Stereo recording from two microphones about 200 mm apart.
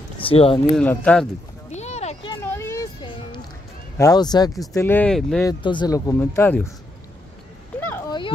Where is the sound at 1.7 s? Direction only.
35° left (ahead or behind).